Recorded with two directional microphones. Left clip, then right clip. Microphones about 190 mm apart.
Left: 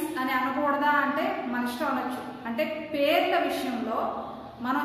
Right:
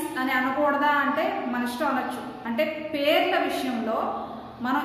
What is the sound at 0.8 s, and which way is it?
A woman's voice, 20° right (ahead or behind).